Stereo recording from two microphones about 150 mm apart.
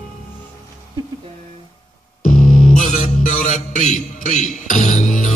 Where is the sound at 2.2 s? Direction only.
60° left (ahead or behind).